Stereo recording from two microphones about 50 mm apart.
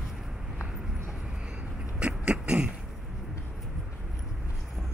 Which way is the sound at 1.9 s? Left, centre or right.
Right.